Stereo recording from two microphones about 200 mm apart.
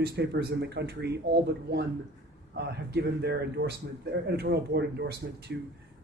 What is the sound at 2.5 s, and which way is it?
Speech, 55° right (ahead or behind).